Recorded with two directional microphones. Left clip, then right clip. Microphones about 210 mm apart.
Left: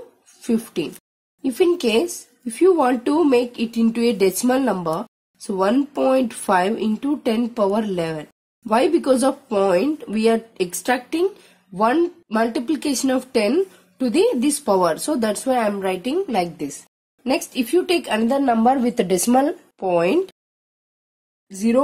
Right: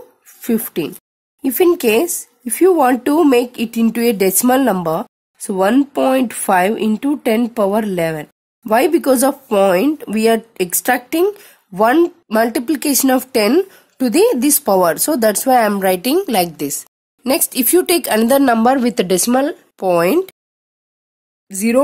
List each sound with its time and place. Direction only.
0.2 s a sound: 30° right (ahead or behind)
1.4 s speech: 30° right (ahead or behind); by 19.5 s 15° right (ahead or behind)
19.7 s speech: 25° right (ahead or behind)
21.5 s speech: 30° right (ahead or behind)